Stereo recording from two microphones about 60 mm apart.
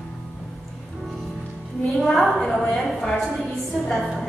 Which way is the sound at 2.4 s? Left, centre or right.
Centre.